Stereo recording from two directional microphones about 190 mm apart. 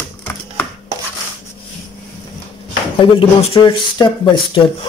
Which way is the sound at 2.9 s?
30° left (ahead or behind).